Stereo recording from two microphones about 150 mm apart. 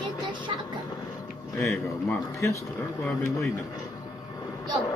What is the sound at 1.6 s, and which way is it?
Speech, 20° left (ahead or behind).